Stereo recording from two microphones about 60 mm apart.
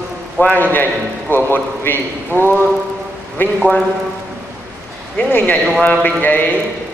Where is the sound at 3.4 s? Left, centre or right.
Left.